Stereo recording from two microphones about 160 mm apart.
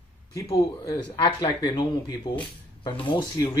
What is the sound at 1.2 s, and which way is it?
Speech, 25° left (ahead or behind).